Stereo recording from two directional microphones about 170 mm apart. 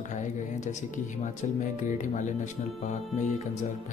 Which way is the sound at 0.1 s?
45° left (ahead or behind).